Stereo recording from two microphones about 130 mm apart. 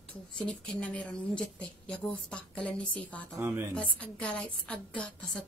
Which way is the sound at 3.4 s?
20° right (ahead or behind).